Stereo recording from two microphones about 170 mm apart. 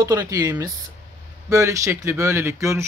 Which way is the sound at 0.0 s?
20° right (ahead or behind).